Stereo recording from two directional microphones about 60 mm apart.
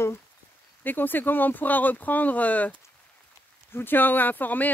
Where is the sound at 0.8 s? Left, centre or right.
Left.